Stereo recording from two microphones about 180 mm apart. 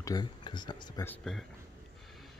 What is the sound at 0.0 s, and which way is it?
Speech, 20° left (ahead or behind).